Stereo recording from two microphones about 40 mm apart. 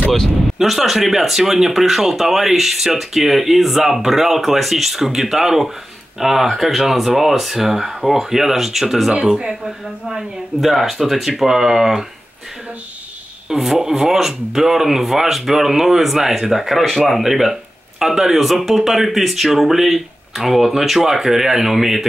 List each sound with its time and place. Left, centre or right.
0.6 s speech: centre
9.1 s speech: right
13.5 s speech: centre